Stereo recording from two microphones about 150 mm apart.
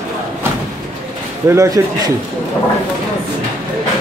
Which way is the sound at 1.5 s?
20° right (ahead or behind).